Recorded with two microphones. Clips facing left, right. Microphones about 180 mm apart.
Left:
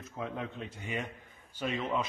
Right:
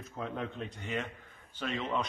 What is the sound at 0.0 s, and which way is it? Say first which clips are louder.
A man's voice: even; centre (ahead or behind).